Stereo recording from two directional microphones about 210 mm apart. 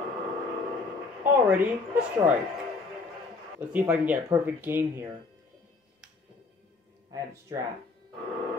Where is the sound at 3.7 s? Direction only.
5° right (ahead or behind).